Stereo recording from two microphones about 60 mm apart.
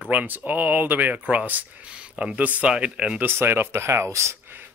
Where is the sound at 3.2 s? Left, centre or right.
Right.